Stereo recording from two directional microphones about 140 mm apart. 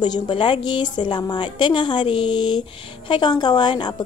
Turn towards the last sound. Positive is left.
turn(degrees=30)  # may be behind; listen again after turning